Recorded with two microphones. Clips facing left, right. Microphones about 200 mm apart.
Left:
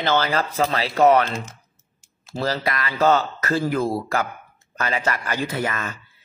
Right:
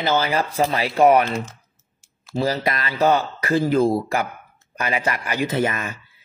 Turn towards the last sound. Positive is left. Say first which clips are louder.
# right 4 dB
turn(degrees=-20)  # may be behind; listen again after turning